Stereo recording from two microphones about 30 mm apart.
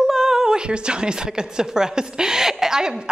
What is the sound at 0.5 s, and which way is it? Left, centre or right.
A woman's voice, right.